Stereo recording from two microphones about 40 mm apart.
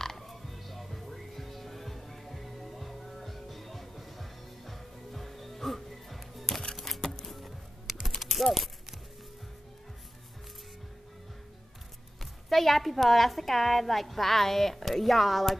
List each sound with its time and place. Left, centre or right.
0.0 s music: centre
8.2 s clip-clop: centre
12.2 s a woman's voice: centre